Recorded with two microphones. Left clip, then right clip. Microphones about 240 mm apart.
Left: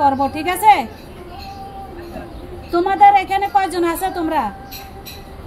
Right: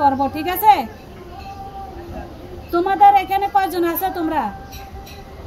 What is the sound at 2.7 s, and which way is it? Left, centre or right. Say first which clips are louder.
A woman's voice: left 1 dB; centre.